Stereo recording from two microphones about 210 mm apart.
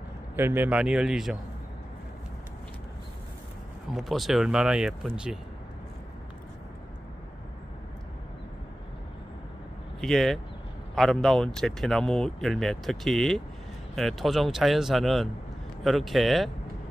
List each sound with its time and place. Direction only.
0.4 s speech: 10° right (ahead or behind)
3.9 s speech: centre (ahead or behind)
9.9 s speech: centre (ahead or behind)